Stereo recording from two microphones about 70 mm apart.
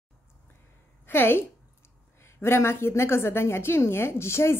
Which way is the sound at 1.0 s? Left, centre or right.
Left.